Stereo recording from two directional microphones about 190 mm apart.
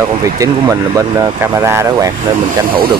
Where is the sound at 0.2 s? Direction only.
15° right (ahead or behind).